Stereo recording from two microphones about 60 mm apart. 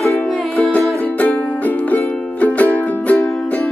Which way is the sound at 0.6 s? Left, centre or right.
Left.